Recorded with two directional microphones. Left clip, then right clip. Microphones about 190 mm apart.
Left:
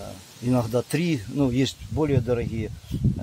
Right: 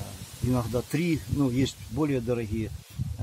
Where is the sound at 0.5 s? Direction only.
50° left (ahead or behind).